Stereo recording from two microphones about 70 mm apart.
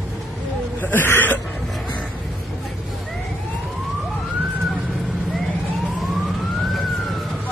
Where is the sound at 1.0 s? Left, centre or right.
Left.